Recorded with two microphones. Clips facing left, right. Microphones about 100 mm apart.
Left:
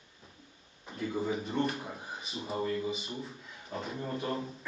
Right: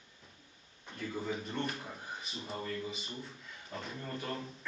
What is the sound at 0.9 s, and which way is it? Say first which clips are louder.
Speech: left 5 dB; 5° left (ahead or behind).